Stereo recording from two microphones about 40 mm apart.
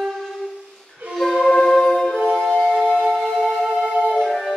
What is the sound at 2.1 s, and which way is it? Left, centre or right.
Music, centre.